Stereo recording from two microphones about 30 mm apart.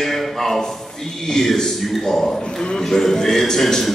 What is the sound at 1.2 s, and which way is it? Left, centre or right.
A man's voice, centre.